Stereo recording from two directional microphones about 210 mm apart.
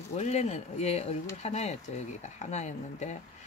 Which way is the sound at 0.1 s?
30° left (ahead or behind).